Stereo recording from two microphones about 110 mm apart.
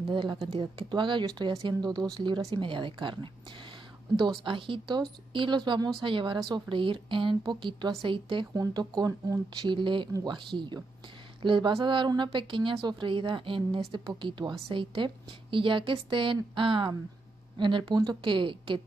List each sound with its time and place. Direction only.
0.1 s a woman's voice: 50° right (ahead or behind)
4.5 s a woman's voice: 50° right (ahead or behind)
8.5 s a woman's voice: 35° right (ahead or behind)